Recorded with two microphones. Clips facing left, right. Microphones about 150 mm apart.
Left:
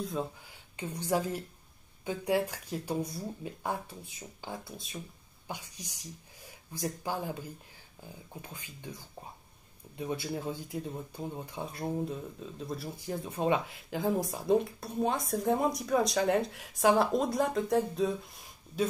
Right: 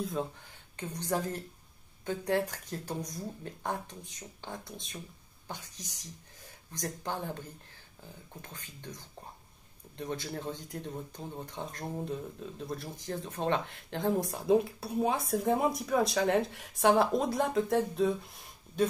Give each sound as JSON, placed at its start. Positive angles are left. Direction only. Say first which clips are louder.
{"t": 0.0, "sound": "speech", "louder": "even", "side_deg": 0}
{"t": 0.7, "sound": "speech", "louder": "left 2 dB", "side_deg": 10}